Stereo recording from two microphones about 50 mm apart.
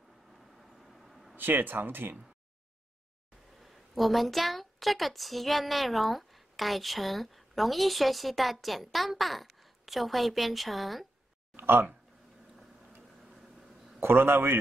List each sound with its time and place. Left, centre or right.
0.3 s vehicle: centre
1.3 s speech: right
3.6 s a woman's voice: centre
11.5 s a sound: right
13.9 s speech: right